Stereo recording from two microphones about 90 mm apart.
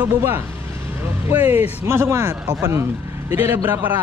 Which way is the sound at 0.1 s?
30° right (ahead or behind).